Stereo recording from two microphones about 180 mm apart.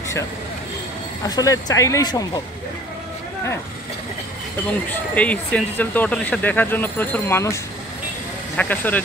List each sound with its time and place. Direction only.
1.2 s speech: 20° left (ahead or behind)
4.6 s speech: 10° left (ahead or behind)
8.5 s speech: 10° left (ahead or behind)